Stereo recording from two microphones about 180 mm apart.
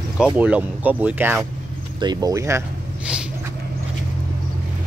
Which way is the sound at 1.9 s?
25° right (ahead or behind).